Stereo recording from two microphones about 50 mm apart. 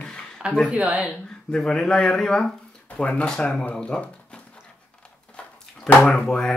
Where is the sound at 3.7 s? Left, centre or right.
Centre.